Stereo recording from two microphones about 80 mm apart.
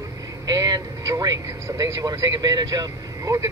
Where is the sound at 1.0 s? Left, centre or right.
Right.